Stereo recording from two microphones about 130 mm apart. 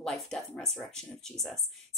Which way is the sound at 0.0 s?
5° left (ahead or behind).